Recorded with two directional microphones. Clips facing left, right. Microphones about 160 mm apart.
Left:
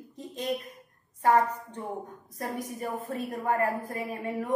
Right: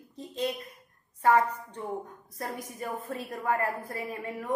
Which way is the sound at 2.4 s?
15° left (ahead or behind).